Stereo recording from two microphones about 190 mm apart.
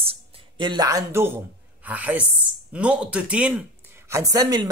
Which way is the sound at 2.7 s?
5° right (ahead or behind).